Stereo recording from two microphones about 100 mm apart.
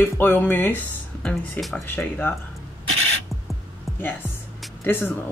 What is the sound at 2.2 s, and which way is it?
Speech, 25° left (ahead or behind).